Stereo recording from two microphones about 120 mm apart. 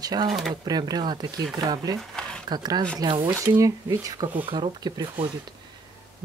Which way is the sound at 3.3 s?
20° right (ahead or behind).